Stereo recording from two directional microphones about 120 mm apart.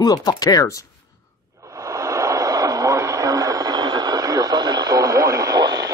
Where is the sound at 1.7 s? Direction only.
25° right (ahead or behind).